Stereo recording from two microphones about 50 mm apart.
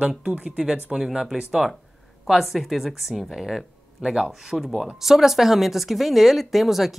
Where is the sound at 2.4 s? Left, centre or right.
Centre.